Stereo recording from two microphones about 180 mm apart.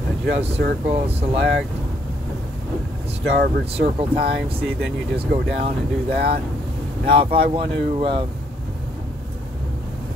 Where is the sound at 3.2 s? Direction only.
65° right (ahead or behind).